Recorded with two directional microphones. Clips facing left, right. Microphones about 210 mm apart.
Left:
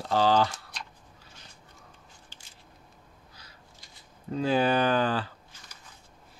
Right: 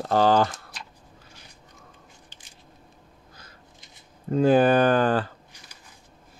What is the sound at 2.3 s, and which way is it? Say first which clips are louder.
Squish: right 2 dB; 15° right (ahead or behind).